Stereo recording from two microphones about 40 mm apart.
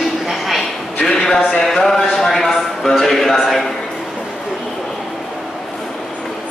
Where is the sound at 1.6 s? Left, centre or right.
Centre.